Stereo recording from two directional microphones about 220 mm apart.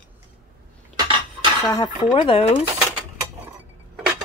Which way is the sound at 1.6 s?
15° left (ahead or behind).